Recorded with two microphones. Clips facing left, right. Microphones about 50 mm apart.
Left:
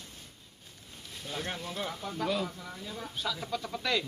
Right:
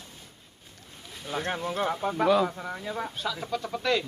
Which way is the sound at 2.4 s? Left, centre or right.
Right.